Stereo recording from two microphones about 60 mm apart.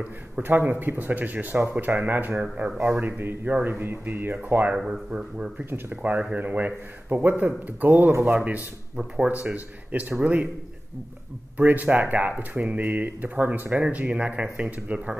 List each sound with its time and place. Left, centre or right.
0.0 s speech: right
8.1 s speech: right
8.4 s speech: right
11.5 s speech: right